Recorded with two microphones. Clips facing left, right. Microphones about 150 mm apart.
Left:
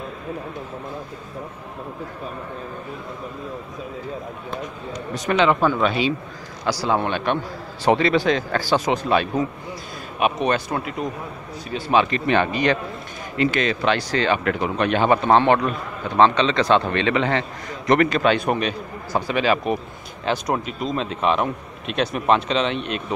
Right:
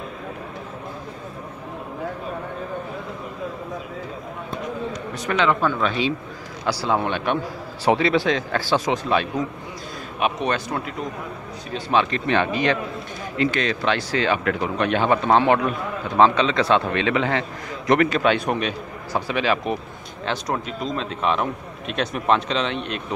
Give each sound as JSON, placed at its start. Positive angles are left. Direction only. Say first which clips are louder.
{"t": 5.2, "sound": "a man's voice", "louder": "left 3 dB", "side_deg": 20}
{"t": 6.9, "sound": "a man's voice", "louder": "even", "side_deg": 0}